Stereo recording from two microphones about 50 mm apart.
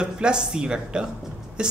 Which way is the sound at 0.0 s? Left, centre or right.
Centre.